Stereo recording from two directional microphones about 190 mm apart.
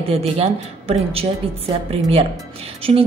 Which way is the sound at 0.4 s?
30° right (ahead or behind).